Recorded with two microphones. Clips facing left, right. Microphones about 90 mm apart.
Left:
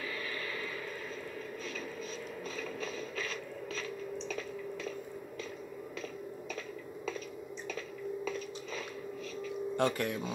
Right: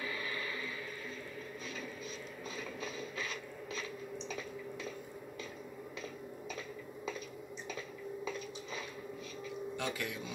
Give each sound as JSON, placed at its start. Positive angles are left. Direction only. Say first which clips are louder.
{"t": 9.8, "sound": "speech", "louder": "left 10 dB", "side_deg": 55}